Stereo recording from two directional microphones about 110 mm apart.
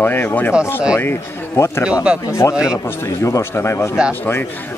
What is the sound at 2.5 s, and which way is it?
Speech, 5° right (ahead or behind).